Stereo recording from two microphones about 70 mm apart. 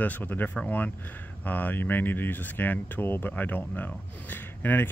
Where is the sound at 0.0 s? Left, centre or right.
Left.